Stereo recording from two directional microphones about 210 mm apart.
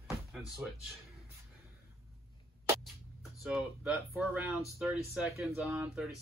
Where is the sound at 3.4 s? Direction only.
5° right (ahead or behind).